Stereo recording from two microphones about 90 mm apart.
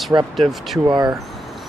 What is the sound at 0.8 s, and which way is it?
Speech, 55° right (ahead or behind).